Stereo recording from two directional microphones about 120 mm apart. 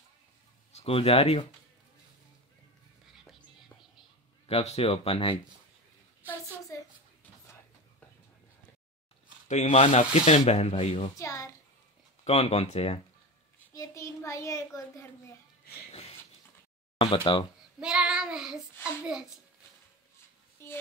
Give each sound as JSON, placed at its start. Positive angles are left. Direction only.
{"t": 0.7, "sound": "speech", "side_deg": 55}
{"t": 4.5, "sound": "speech", "side_deg": 55}
{"t": 6.7, "sound": "a sound", "side_deg": 25}
{"t": 9.5, "sound": "speech", "side_deg": 70}
{"t": 11.1, "sound": "a child's voice", "side_deg": 25}
{"t": 12.3, "sound": "speech", "side_deg": 60}
{"t": 13.7, "sound": "a child's voice", "side_deg": 25}
{"t": 17.0, "sound": "speech", "side_deg": 45}
{"t": 17.7, "sound": "child singing", "side_deg": -5}
{"t": 20.6, "sound": "child singing", "side_deg": 20}